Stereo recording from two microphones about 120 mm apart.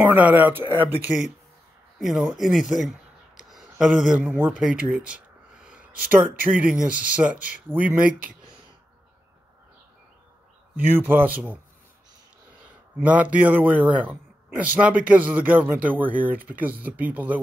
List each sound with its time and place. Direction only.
0.0 s speech: 15° right (ahead or behind)
5.0 s a sound: 10° right (ahead or behind)
6.6 s speech: 10° right (ahead or behind)
10.9 s speech: 15° right (ahead or behind)
13.0 s speech: 10° right (ahead or behind)